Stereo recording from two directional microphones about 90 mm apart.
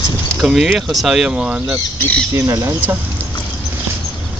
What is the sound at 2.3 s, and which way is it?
Speech, 35° right (ahead or behind).